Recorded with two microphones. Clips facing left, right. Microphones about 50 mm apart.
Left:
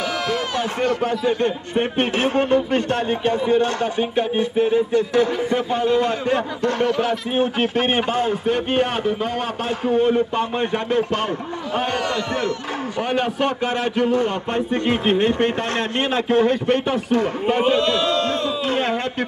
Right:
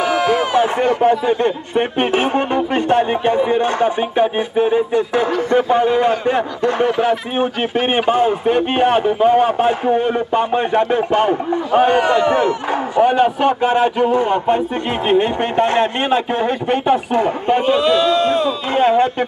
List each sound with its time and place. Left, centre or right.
0.2 s a man's voice: right
17.5 s speech: centre
18.3 s speech: centre